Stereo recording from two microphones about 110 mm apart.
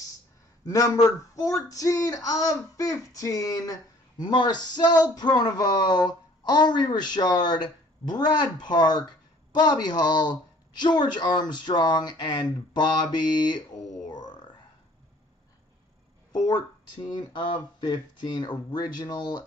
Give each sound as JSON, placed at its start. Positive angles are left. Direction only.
{"t": 0.7, "sound": "speech", "side_deg": 30}
{"t": 14.0, "sound": "a sound", "side_deg": 40}
{"t": 16.3, "sound": "speech", "side_deg": 35}